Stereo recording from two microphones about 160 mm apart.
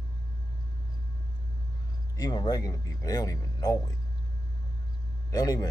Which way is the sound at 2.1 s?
25° left (ahead or behind).